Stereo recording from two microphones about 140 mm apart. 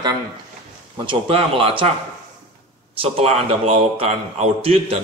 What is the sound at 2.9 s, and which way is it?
Speech, 45° right (ahead or behind).